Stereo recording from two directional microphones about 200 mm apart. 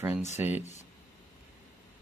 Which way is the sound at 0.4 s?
10° right (ahead or behind).